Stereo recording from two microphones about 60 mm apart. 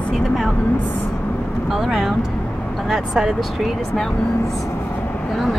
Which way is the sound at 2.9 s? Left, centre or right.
Centre.